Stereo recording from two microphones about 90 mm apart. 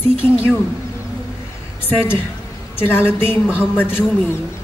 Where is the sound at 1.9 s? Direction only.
25° left (ahead or behind).